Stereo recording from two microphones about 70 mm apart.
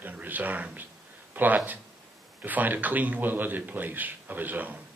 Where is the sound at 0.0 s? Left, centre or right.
Right.